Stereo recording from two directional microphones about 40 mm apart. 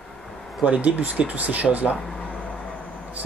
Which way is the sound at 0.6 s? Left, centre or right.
Right.